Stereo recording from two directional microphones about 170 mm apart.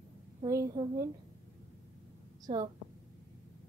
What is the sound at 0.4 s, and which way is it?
Speech, 20° right (ahead or behind).